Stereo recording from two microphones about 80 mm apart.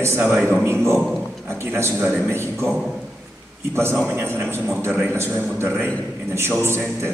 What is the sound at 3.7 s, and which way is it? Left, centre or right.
A man's voice, right.